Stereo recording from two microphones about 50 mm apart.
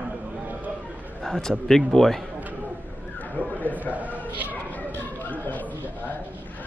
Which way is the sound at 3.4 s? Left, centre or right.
Left.